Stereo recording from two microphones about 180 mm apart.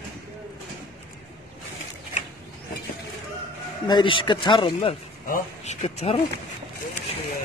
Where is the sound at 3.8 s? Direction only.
25° left (ahead or behind).